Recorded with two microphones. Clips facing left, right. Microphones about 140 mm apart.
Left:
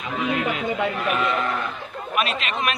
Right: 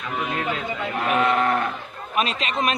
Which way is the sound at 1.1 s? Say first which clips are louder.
Right 3 dB; 65° right (ahead or behind).